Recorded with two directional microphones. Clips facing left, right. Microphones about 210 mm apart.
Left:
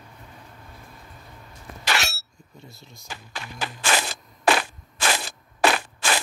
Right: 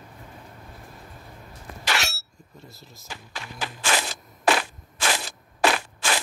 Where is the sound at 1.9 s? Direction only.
60° left (ahead or behind).